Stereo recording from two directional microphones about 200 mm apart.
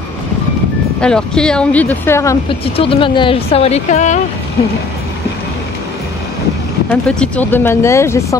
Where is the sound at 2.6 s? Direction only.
25° left (ahead or behind).